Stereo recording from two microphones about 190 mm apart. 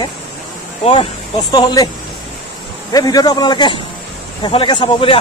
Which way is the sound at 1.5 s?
20° left (ahead or behind).